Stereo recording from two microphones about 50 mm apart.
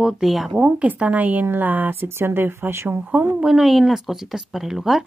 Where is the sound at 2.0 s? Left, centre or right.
Right.